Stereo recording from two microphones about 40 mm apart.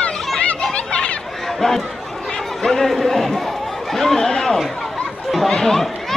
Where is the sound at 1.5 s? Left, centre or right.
Centre.